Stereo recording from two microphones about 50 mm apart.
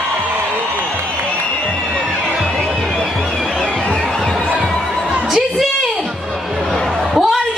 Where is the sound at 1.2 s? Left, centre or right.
Left.